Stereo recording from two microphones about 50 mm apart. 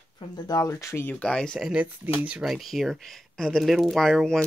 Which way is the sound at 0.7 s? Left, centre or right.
Left.